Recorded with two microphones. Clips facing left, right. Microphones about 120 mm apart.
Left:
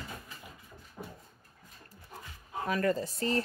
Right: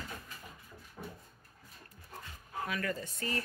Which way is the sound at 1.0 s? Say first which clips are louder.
Left 1 dB; 20° left (ahead or behind).